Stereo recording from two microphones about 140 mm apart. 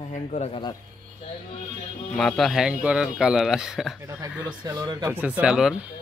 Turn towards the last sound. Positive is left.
turn(degrees=-5)  # may be behind; listen again after turning